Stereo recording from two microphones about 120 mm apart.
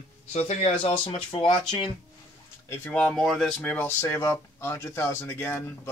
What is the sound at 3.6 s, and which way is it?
Speech, 15° left (ahead or behind).